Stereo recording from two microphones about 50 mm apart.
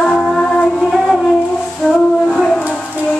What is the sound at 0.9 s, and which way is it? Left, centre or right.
Music, centre.